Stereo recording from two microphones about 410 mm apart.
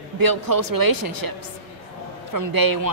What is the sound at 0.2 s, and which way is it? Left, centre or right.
A woman's voice, right.